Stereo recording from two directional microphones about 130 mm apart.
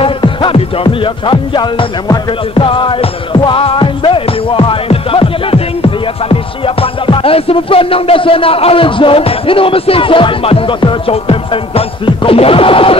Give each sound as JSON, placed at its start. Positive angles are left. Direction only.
{"t": 0.0, "sound": "music", "side_deg": 40}